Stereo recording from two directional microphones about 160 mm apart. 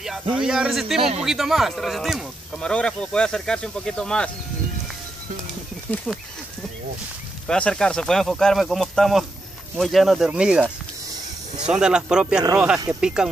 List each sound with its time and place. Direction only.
0.0 s speech: centre (ahead or behind)
0.9 s a man's voice: 40° right (ahead or behind)
1.2 s speech: centre (ahead or behind)
6.1 s speech: 5° left (ahead or behind)
7.4 s speech: 5° left (ahead or behind)